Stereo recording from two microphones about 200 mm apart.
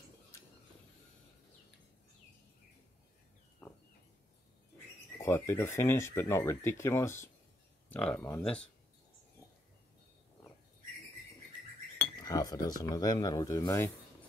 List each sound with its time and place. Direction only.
3.6 s a sound: 5° left (ahead or behind)
5.2 s speech: 15° left (ahead or behind)
12.2 s speech: 20° left (ahead or behind)